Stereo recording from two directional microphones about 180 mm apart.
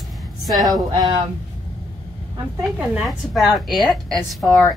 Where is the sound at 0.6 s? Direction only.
20° right (ahead or behind).